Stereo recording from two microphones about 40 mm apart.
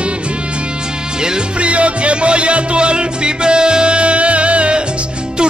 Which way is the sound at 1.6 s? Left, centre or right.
Right.